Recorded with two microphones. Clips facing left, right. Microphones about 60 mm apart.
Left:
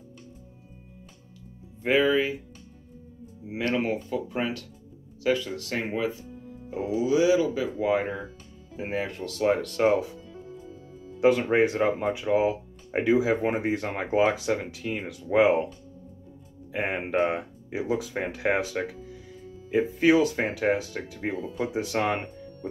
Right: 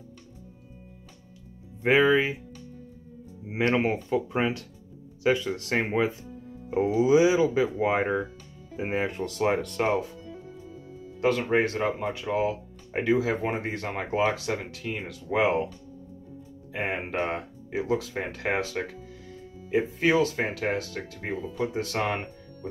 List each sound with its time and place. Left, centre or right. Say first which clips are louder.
1.9 s speech: right 2 dB; centre
3.4 s speech: right 2 dB; right
9.5 s speech: left 5 dB; centre
11.1 s speech: left 3 dB; centre
16.7 s speech: left 1 dB; centre
17.1 s speech: left 4 dB; centre